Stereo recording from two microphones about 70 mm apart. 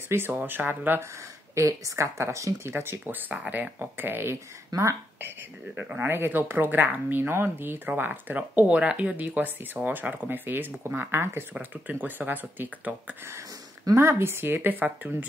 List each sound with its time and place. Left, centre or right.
0.1 s speech: right
1.5 s speech: right
2.7 s speech: right
4.7 s speech: right
5.8 s speech: right
13.9 s speech: right